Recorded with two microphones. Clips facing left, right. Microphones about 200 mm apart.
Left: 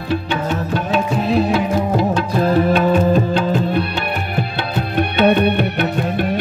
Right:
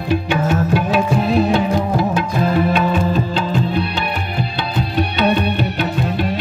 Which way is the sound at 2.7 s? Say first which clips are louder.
Left 3 dB; 50° left (ahead or behind).